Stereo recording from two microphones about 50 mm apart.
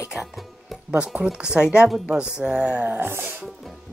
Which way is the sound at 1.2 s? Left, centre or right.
Centre.